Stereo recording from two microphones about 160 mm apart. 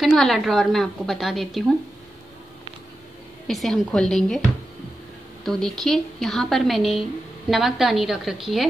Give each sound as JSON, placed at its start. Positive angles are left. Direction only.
{"t": 0.0, "sound": "a woman's voice", "side_deg": 0}
{"t": 3.4, "sound": "a woman's voice", "side_deg": 0}
{"t": 5.4, "sound": "a woman's voice", "side_deg": 0}